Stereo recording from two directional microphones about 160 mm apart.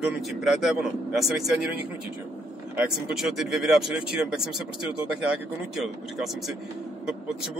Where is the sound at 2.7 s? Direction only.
5° right (ahead or behind).